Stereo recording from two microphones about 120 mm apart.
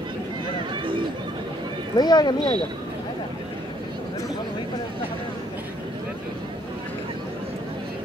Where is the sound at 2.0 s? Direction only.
35° left (ahead or behind).